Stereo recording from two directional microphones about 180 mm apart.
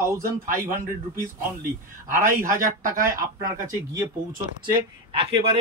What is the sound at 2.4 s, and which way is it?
Speech, 50° right (ahead or behind).